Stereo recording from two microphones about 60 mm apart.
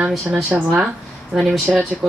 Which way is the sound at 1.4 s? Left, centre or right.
Centre.